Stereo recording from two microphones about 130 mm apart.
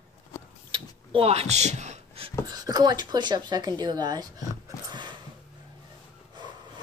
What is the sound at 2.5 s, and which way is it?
Speech, 30° right (ahead or behind).